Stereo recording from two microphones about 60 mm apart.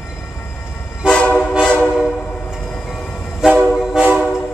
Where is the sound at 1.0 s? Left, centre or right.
Centre.